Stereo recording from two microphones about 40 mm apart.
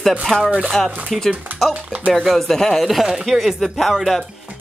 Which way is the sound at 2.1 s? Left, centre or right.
Centre.